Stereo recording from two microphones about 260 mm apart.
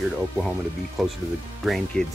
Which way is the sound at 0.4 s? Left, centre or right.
Centre.